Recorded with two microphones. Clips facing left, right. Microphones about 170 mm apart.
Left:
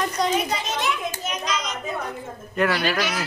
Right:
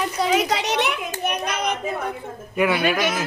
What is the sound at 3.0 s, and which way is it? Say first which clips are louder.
Speech: right 3 dB; 50° right (ahead or behind).